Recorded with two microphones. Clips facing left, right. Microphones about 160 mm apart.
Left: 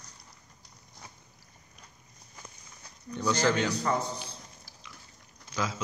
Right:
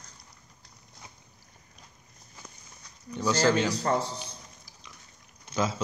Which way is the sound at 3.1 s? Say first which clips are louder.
Right 1 dB; 5° right (ahead or behind).